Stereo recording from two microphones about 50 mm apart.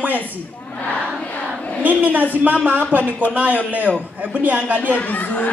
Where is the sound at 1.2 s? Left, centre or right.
Left.